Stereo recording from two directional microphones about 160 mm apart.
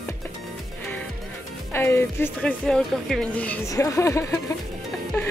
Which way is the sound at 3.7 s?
20° left (ahead or behind).